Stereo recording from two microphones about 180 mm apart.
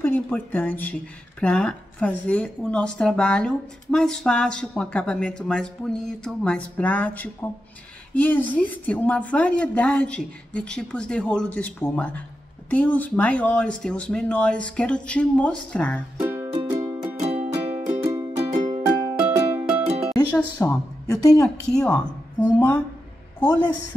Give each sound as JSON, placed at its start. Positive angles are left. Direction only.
{"t": 0.0, "sound": "a woman's voice", "side_deg": 10}
{"t": 16.6, "sound": "music", "side_deg": -10}
{"t": 17.2, "sound": "music", "side_deg": -35}
{"t": 18.9, "sound": "music", "side_deg": -15}
{"t": 20.1, "sound": "music", "side_deg": 5}
{"t": 20.6, "sound": "a woman's voice", "side_deg": 20}
{"t": 21.6, "sound": "speech", "side_deg": 5}
{"t": 23.4, "sound": "a woman's voice", "side_deg": 10}